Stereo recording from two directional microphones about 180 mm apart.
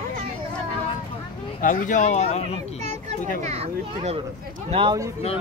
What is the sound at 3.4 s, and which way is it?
Speech, 35° right (ahead or behind).